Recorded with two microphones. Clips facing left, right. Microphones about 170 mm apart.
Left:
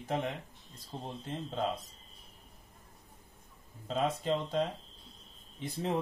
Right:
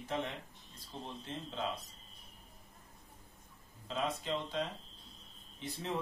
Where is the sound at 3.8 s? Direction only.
45° left (ahead or behind).